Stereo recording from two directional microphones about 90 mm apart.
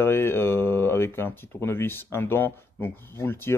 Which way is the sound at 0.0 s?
25° left (ahead or behind).